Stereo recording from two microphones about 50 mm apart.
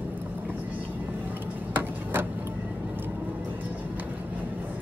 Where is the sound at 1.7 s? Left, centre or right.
Right.